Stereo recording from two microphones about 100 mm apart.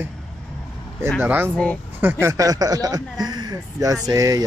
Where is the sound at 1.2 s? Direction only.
20° right (ahead or behind).